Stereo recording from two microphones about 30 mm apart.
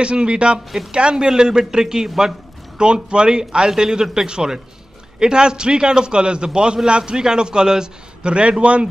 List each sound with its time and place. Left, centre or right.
0.0 s a man's voice: right